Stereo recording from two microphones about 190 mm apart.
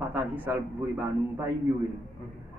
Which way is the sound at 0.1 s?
10° right (ahead or behind).